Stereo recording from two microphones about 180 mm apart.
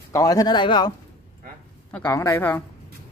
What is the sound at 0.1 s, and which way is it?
Speech, 20° left (ahead or behind).